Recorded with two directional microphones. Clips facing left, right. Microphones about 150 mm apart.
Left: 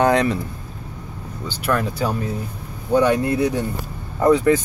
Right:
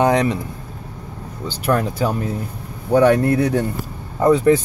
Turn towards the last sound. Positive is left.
turn(degrees=-20)  # may be behind; listen again after turning